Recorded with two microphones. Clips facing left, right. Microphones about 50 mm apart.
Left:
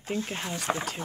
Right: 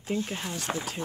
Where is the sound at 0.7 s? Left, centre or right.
Left.